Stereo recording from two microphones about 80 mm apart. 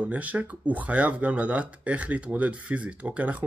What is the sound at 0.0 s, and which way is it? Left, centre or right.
Speech, centre.